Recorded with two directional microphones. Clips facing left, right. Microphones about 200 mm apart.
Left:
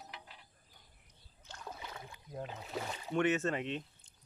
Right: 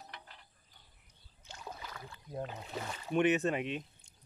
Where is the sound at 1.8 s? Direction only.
20° left (ahead or behind).